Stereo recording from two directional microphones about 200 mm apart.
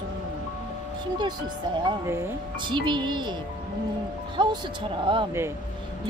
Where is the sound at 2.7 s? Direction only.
25° right (ahead or behind).